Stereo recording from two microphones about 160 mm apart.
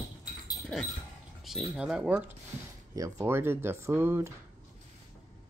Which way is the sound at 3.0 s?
20° right (ahead or behind).